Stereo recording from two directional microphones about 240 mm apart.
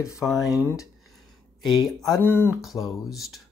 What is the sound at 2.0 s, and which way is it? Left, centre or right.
Speech, centre.